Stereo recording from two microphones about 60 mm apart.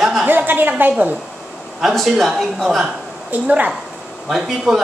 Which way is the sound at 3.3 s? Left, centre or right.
Right.